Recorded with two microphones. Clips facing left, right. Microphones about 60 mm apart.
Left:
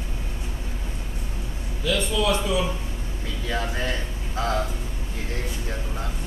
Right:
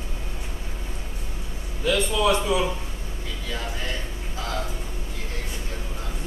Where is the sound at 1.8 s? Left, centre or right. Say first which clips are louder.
Right 2 dB; right.